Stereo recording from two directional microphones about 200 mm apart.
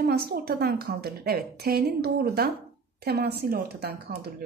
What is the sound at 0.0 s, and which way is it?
A woman's voice, 50° right (ahead or behind).